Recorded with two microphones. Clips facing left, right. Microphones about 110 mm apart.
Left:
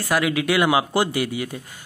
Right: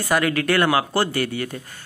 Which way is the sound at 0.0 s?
5° left (ahead or behind).